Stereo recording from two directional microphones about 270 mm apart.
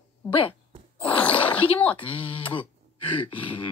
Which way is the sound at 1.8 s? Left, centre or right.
Centre.